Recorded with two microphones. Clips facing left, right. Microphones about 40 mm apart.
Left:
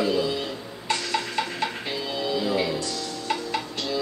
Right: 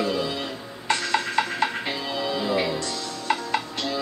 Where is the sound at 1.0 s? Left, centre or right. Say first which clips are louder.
Right 5 dB; right.